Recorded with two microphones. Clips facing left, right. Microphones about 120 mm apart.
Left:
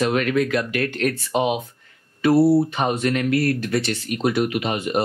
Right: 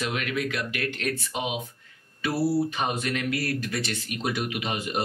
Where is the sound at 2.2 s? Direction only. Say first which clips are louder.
Left 9 dB; 60° left (ahead or behind).